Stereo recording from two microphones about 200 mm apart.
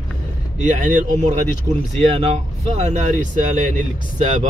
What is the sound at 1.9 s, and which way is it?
Speech, 30° right (ahead or behind).